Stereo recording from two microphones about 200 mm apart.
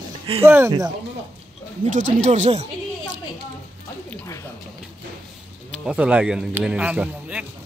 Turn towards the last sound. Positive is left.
turn(degrees=-5)  # may be behind; listen again after turning